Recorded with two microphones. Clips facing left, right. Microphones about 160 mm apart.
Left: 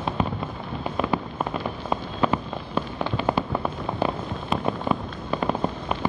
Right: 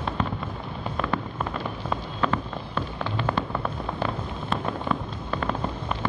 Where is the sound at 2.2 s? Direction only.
15° left (ahead or behind).